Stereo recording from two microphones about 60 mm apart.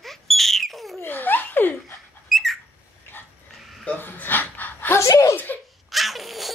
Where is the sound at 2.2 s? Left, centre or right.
Centre.